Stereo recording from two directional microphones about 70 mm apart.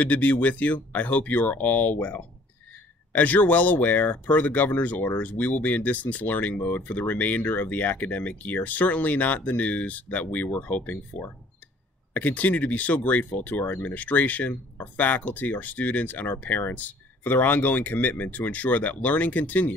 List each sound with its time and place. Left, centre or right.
0.0 s speech: left